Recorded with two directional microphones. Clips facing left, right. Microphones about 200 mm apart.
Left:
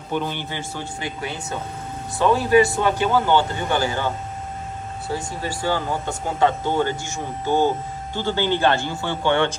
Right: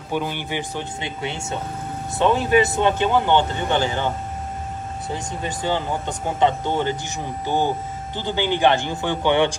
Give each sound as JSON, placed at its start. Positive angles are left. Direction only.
{"t": 0.1, "sound": "speech", "side_deg": -10}